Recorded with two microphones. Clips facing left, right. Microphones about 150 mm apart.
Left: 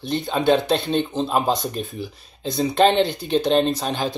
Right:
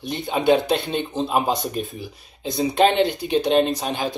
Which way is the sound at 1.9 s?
15° right (ahead or behind).